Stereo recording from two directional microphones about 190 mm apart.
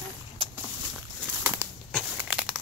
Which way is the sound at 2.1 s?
5° right (ahead or behind).